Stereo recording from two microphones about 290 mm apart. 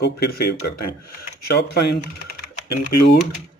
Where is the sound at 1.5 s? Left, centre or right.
Left.